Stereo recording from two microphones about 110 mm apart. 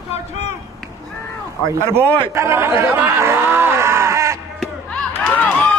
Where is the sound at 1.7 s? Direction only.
25° right (ahead or behind).